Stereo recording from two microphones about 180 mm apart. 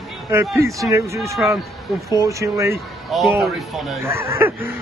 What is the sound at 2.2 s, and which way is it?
Speech, 15° right (ahead or behind).